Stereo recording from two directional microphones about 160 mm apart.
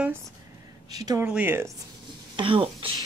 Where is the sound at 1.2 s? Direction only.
10° right (ahead or behind).